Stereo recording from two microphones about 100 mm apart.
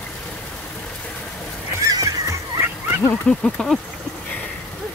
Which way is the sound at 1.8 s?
35° right (ahead or behind).